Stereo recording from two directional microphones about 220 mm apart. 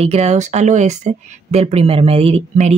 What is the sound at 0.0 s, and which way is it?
Speech, 30° right (ahead or behind).